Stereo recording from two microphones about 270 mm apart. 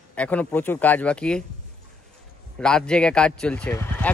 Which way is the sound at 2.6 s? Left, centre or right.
Centre.